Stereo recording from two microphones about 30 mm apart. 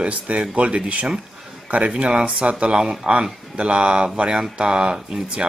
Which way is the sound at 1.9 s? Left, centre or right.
Right.